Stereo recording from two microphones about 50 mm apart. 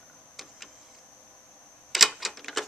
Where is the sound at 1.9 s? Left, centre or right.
Centre.